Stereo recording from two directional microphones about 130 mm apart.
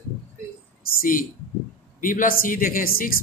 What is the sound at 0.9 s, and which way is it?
Speech, 90° left.